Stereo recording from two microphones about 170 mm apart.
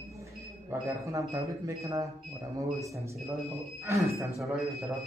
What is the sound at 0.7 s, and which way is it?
Speech, 20° right (ahead or behind).